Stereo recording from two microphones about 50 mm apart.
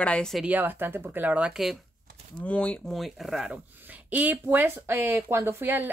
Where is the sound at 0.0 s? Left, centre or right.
Left.